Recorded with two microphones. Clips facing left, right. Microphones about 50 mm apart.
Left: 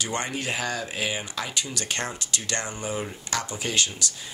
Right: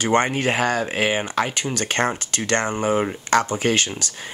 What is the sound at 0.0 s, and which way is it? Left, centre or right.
Speech, right.